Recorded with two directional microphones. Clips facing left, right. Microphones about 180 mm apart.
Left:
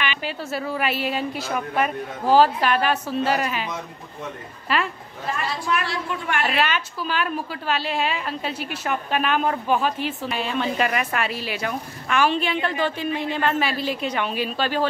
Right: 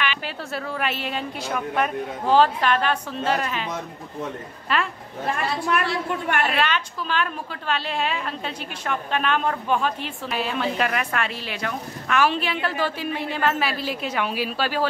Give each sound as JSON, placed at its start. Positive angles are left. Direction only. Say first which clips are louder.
{"t": 0.0, "sound": "a woman's voice", "louder": "left 1 dB", "side_deg": 0}
{"t": 4.7, "sound": "a woman's voice", "louder": "left 1 dB", "side_deg": 5}
{"t": 5.2, "sound": "a woman's voice", "louder": "right 2 dB", "side_deg": -55}
{"t": 6.6, "sound": "a woman's voice", "louder": "left 1 dB", "side_deg": 5}